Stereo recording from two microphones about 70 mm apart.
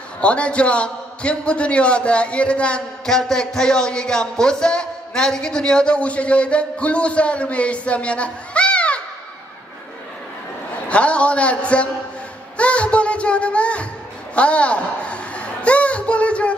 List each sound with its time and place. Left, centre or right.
0.2 s a man's voice: centre
10.9 s a man's voice: centre
14.3 s a sound: centre